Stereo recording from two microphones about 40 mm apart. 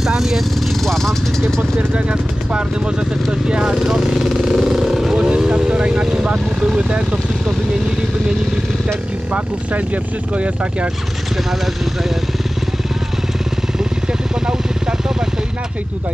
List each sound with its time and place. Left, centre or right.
0.0 s vehicle: centre
0.8 s vehicle: centre
2.0 s vehicle: right
9.3 s speech: right
11.6 s speech: centre
14.4 s vehicle: centre